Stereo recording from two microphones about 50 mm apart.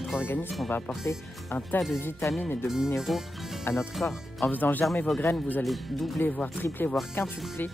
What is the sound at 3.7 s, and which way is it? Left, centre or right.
Speech, left.